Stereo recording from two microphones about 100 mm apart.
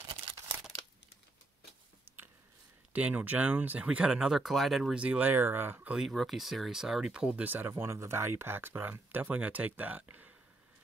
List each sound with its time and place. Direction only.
0.3 s crumpling: 65° right (ahead or behind)
2.1 s biting: 20° right (ahead or behind)
2.9 s speech: 15° right (ahead or behind)
5.9 s speech: centre (ahead or behind); by 10.3 s 15° right (ahead or behind)